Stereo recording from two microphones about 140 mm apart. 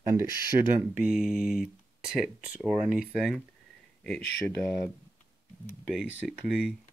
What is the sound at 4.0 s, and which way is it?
Speech, 5° left (ahead or behind).